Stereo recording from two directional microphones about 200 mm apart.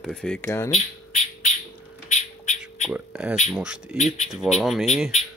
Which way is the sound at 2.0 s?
35° left (ahead or behind).